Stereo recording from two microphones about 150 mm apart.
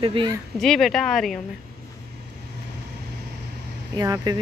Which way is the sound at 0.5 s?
Centre (ahead or behind).